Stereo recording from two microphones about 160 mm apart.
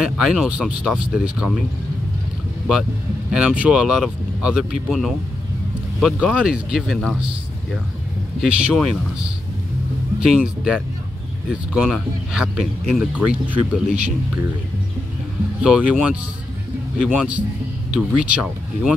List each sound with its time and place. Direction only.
0.0 s speech: 5° right (ahead or behind)
3.3 s speech: 5° right (ahead or behind)
8.4 s speech: centre (ahead or behind)
15.6 s speech: 5° right (ahead or behind)